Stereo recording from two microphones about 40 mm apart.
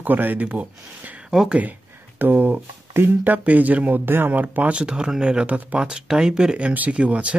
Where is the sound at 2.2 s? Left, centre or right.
Right.